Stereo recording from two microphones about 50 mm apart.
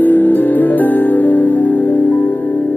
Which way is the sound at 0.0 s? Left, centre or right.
Left.